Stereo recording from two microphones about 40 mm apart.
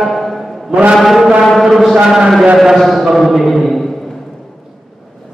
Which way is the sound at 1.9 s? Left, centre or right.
Centre.